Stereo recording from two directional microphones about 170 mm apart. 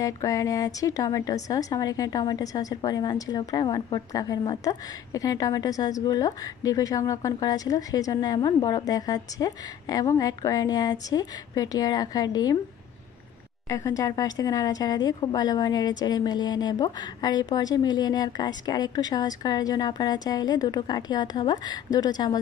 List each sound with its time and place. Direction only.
0.0 s a woman's voice: 20° left (ahead or behind)
13.7 s a woman's voice: 20° left (ahead or behind)